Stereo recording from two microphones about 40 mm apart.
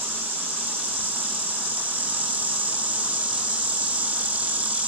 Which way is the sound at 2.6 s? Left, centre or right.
Right.